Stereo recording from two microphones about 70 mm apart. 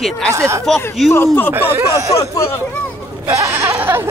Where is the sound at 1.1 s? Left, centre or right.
Left.